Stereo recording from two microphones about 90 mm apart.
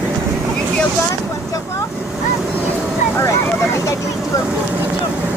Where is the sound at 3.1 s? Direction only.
35° left (ahead or behind).